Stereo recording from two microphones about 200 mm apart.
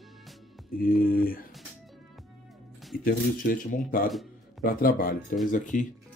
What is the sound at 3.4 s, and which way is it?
Speech, 45° left (ahead or behind).